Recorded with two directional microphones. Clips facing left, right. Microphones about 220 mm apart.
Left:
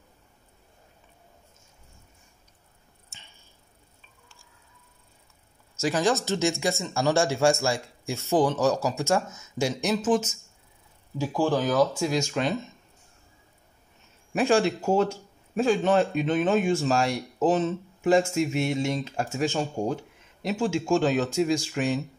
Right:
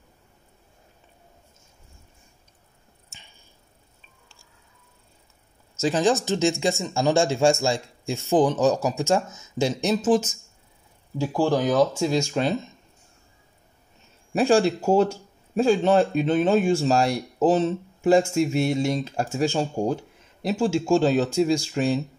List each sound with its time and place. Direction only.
5.8 s speech: 20° right (ahead or behind)
11.1 s speech: 15° right (ahead or behind); by 12.5 s 30° right (ahead or behind)
14.3 s speech: 30° right (ahead or behind)